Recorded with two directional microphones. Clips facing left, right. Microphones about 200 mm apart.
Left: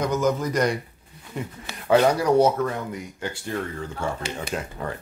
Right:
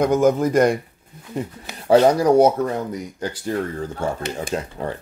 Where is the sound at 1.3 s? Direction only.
35° right (ahead or behind).